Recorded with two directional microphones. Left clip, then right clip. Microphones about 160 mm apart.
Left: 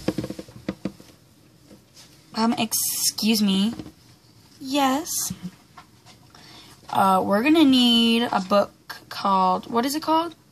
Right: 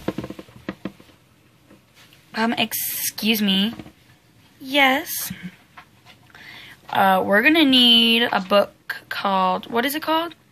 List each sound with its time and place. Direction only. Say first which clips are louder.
2.3 s a woman's voice: right 2 dB; 10° left (ahead or behind)